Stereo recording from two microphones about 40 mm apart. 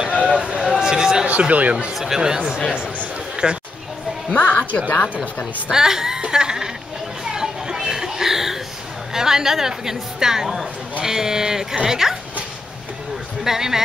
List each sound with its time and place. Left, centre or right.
0.0 s a sound: centre
0.6 s a sound: centre
0.9 s a man's voice: centre
1.2 s speech: right
2.1 s a woman's voice: centre
4.4 s speech: left
5.7 s a woman's voice: centre
7.2 s a sound: centre
9.1 s a woman's voice: centre
13.4 s a woman's voice: centre